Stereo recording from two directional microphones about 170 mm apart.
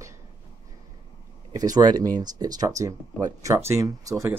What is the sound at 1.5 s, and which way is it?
Speech, 20° right (ahead or behind).